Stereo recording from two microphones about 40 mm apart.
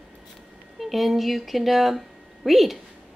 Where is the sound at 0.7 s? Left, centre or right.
Centre.